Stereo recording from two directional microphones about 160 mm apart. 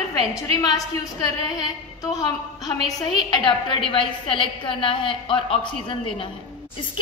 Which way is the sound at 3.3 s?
30° left (ahead or behind).